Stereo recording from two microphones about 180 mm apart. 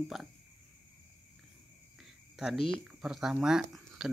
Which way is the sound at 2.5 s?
30° left (ahead or behind).